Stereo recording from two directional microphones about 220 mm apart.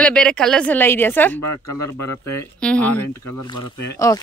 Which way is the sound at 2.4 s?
5° left (ahead or behind).